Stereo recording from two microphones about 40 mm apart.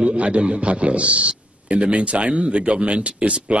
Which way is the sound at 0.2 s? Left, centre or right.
Right.